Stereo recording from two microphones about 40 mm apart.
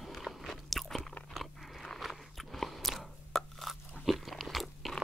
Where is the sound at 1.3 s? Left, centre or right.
Centre.